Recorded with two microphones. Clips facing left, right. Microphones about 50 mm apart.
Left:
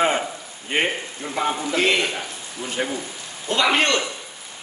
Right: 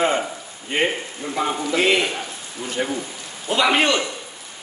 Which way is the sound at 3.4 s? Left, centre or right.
Centre.